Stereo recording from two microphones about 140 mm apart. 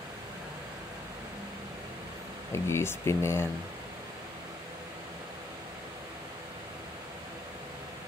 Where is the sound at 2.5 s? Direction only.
20° left (ahead or behind).